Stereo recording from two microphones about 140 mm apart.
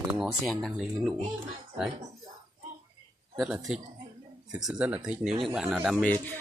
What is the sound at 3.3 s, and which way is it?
A man's voice, 5° right (ahead or behind).